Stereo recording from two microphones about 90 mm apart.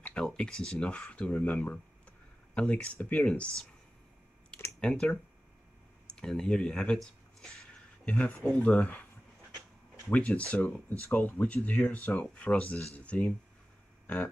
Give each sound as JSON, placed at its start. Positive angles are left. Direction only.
{"t": 0.0, "sound": "speech", "side_deg": 10}
{"t": 4.7, "sound": "speech", "side_deg": 10}
{"t": 8.0, "sound": "speech", "side_deg": 15}
{"t": 10.1, "sound": "speech", "side_deg": 15}